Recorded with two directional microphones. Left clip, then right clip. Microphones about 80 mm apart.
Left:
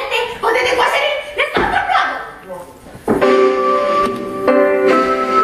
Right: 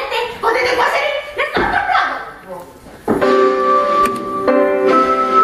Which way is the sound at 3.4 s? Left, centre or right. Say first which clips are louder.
Right 1 dB; left.